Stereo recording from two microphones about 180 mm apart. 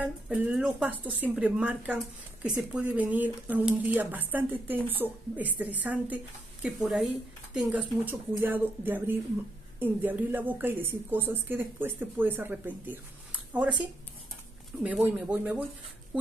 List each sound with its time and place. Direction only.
0.0 s a woman's voice: 5° right (ahead or behind)
14.8 s a woman's voice: 10° right (ahead or behind)